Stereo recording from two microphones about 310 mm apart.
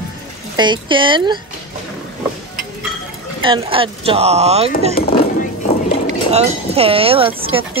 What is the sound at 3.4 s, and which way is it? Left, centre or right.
Speech, centre.